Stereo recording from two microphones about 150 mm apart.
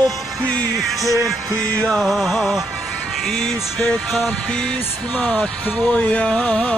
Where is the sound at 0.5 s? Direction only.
5° left (ahead or behind).